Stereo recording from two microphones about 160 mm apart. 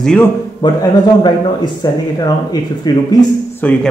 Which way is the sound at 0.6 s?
30° left (ahead or behind).